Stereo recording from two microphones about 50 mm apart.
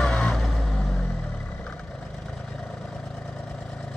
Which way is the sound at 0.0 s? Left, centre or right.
Centre.